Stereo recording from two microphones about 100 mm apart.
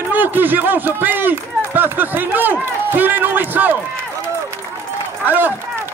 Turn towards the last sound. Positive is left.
turn(degrees=-20)  # may be behind; listen again after turning